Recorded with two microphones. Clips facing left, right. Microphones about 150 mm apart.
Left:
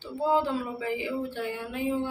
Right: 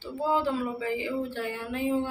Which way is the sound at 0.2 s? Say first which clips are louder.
Left 1 dB; 20° left (ahead or behind).